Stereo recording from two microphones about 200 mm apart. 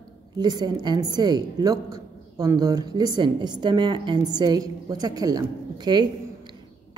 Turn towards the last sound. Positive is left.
turn(degrees=-20)  # may be behind; listen again after turning